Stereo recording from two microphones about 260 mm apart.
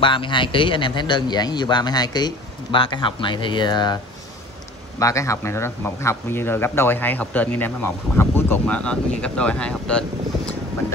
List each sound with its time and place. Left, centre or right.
0.0 s speech: centre